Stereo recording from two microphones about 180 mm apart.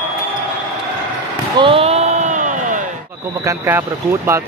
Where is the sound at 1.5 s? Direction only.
30° right (ahead or behind).